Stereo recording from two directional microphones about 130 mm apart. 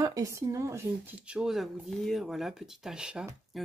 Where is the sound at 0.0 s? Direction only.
25° right (ahead or behind).